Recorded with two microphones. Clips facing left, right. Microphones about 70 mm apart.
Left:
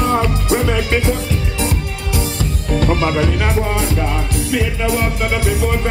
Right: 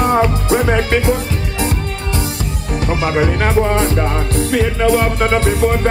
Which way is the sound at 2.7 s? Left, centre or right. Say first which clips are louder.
Even; centre.